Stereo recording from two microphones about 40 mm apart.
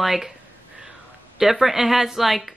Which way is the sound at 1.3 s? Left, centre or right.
Centre.